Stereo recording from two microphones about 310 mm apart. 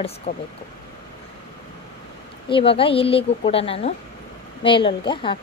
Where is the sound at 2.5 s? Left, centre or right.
Centre.